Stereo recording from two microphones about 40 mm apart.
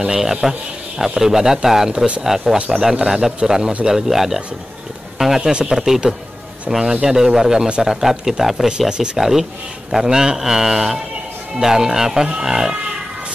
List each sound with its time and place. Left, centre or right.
0.2 s a man's voice: centre
5.4 s a man's voice: right
5.7 s a man's voice: centre
8.6 s a man's voice: centre